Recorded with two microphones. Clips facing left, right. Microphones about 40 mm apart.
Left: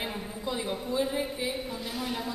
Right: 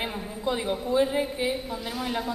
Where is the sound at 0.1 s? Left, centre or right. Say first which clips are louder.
Right 2 dB; centre.